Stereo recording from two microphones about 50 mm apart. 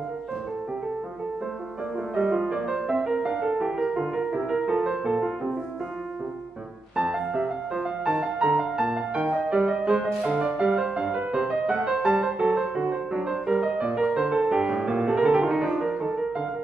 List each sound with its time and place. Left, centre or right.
2.1 s music: centre
7.0 s music: centre
16.0 s music: centre